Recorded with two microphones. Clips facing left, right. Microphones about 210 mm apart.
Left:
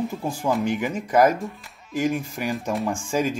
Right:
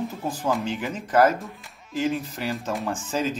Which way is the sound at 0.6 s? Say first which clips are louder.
Left 4 dB; 15° left (ahead or behind).